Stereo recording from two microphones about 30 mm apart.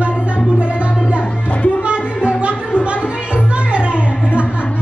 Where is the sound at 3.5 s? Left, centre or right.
Right.